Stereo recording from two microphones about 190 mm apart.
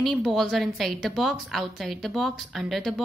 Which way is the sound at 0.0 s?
Centre (ahead or behind).